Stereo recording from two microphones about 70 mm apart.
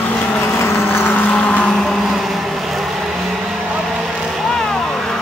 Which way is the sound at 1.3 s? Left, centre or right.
Centre.